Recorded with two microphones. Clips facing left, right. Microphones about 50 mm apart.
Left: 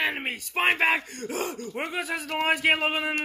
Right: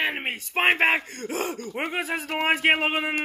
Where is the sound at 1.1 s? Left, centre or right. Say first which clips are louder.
Right 2 dB; right.